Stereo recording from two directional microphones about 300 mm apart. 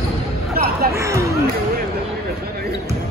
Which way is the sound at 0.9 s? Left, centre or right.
Centre.